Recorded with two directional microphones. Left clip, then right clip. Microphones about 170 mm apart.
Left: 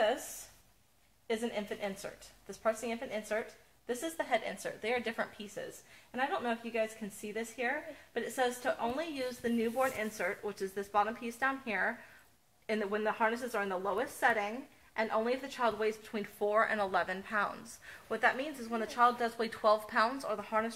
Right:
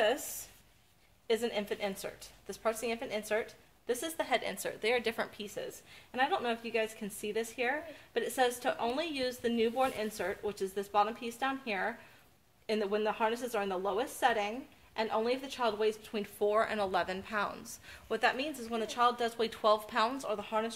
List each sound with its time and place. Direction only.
1.2 s a woman's voice: 40° right (ahead or behind)
19.3 s speech: 50° right (ahead or behind)